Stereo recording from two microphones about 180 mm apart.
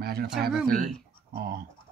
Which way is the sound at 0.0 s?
60° right (ahead or behind).